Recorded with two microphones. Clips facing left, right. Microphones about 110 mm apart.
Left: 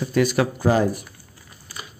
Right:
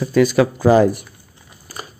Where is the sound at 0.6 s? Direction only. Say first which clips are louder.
Right 7 dB; 90° right.